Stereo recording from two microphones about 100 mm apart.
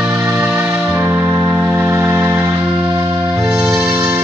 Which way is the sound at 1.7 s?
20° right (ahead or behind).